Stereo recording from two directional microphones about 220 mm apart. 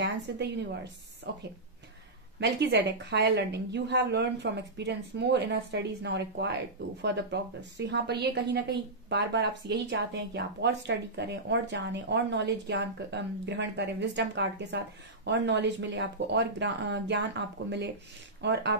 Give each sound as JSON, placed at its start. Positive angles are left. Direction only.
{"t": 0.0, "sound": "speech", "side_deg": -50}
{"t": 2.4, "sound": "speech", "side_deg": -50}